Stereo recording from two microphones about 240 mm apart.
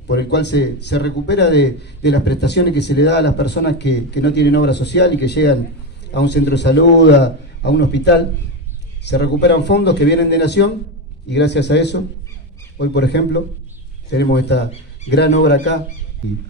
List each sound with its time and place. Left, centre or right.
0.1 s a man's voice: left